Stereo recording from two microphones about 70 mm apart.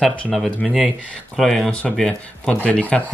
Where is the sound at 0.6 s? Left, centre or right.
Centre.